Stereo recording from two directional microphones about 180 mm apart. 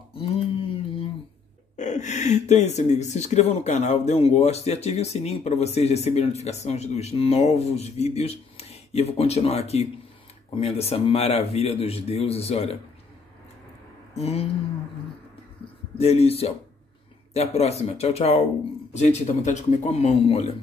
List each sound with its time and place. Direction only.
0.1 s a sound: 30° left (ahead or behind)
1.8 s speech: 40° left (ahead or behind)
14.1 s speech: 35° left (ahead or behind)
16.0 s speech: 35° left (ahead or behind)